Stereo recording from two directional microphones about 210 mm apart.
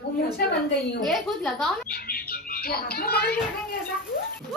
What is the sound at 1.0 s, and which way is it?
Speech, centre (ahead or behind).